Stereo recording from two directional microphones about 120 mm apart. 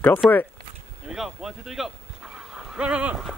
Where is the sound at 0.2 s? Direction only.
Centre (ahead or behind).